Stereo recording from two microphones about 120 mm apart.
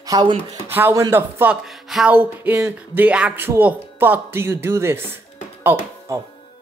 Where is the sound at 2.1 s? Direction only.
15° right (ahead or behind).